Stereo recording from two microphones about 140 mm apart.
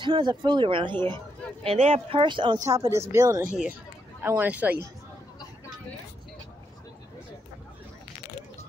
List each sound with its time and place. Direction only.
0.0 s speech: 35° right (ahead or behind)
2.7 s speech: 20° right (ahead or behind)
4.2 s speech: 15° right (ahead or behind)